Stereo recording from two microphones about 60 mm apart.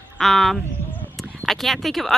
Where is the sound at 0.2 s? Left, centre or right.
Centre.